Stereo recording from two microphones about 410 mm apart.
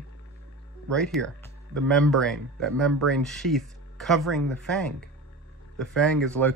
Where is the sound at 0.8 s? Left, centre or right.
Centre.